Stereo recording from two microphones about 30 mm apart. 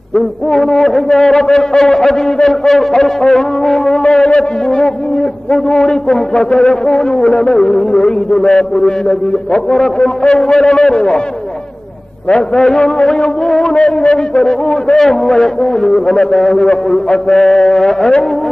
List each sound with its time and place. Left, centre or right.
0.5 s mantra: centre
1.0 s a sound: centre
4.0 s a sound: left
5.5 s a man's voice: left
12.3 s a man's voice: left
14.0 s a sound: left
14.4 s a man's voice: left
16.6 s a man's voice: left
17.4 s mantra: centre